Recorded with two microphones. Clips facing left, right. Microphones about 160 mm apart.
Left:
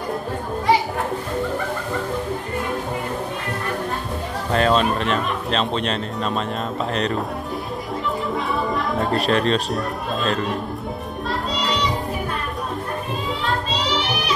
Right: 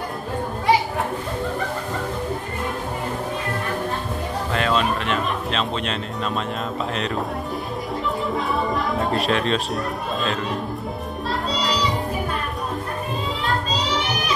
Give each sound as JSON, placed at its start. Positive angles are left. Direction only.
{"t": 4.6, "sound": "a sound", "side_deg": 35}
{"t": 5.6, "sound": "speech", "side_deg": 0}
{"t": 8.5, "sound": "speech", "side_deg": 0}
{"t": 11.6, "sound": "music", "side_deg": 0}